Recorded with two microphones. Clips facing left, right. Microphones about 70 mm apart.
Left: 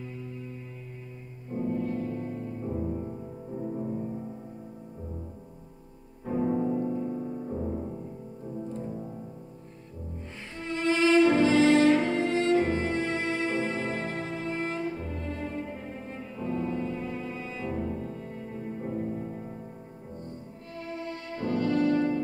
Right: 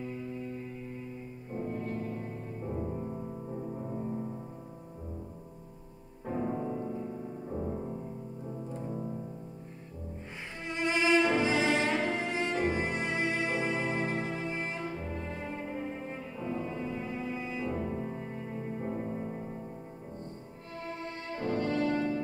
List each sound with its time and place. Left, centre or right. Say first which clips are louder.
1.7 s music: left 7 dB; right
2.6 s music: left 2 dB; centre
6.2 s music: left 6 dB; centre
10.6 s music: left 5 dB; centre
16.1 s cello: left 3 dB; centre
18.5 s music: left 2 dB; centre
21.4 s music: left 3 dB; right
21.7 s music: left 7 dB; left